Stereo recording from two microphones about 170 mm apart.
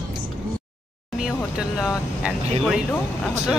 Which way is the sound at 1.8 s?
5° right (ahead or behind).